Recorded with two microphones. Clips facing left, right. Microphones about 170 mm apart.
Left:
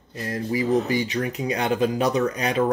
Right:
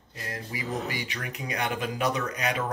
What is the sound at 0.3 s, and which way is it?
Speech, 30° left (ahead or behind).